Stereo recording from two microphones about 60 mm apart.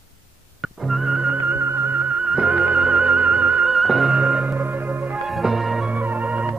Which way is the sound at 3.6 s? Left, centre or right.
Centre.